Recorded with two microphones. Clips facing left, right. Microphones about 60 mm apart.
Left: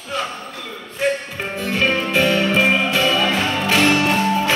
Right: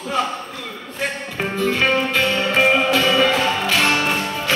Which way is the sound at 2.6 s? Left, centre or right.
Centre.